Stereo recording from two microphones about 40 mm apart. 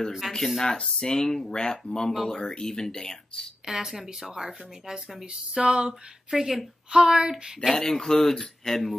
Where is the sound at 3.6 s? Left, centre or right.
Centre.